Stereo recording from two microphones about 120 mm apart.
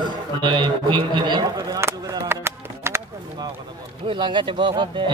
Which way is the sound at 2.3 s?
20° right (ahead or behind).